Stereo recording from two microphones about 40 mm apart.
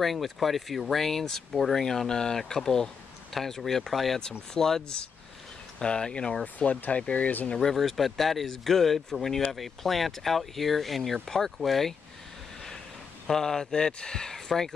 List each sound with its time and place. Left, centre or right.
0.0 s speech: centre; by 7.2 s left
7.2 s speech: left
7.7 s speech: centre
13.3 s speech: centre